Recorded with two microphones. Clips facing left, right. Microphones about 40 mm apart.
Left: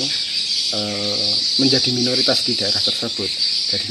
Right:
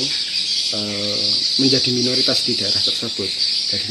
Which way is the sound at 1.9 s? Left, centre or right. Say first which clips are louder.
Even; left.